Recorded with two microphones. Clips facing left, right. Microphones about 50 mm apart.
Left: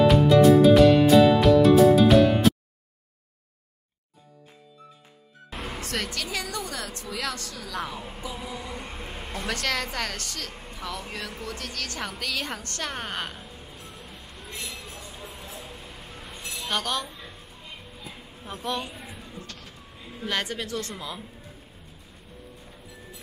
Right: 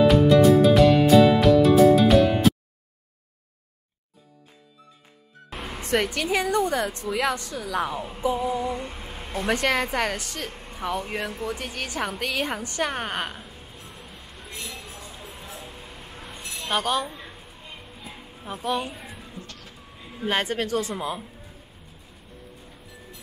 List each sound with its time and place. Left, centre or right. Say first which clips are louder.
0.0 s music: right 1 dB; centre
5.5 s music: even; centre
5.8 s a woman's voice: right 9 dB; right
8.9 s a sound: right 3 dB; centre
9.5 s a woman's voice: right 6 dB; centre
14.6 s a sound: right 1 dB; right
15.0 s music: even; centre
16.6 s a sound: right 4 dB; centre
20.2 s speech: right 5 dB; right